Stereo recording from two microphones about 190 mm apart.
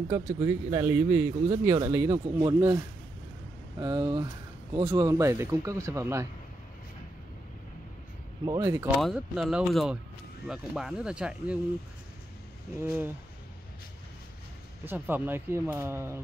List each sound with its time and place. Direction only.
0.1 s speech: 15° right (ahead or behind)
3.8 s speech: 20° right (ahead or behind)
8.5 s speech: 15° right (ahead or behind)
9.0 s speech: 5° right (ahead or behind)
12.7 s speech: 10° right (ahead or behind)
14.9 s speech: 10° right (ahead or behind)